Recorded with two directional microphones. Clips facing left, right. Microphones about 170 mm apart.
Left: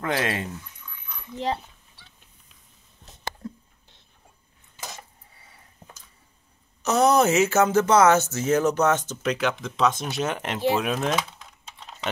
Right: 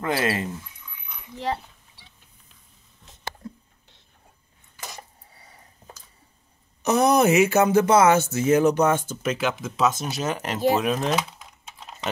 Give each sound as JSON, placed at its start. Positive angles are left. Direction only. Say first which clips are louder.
{"t": 0.0, "sound": "speech", "louder": "right 2 dB", "side_deg": -5}
{"t": 6.8, "sound": "speech", "louder": "right 1 dB", "side_deg": -15}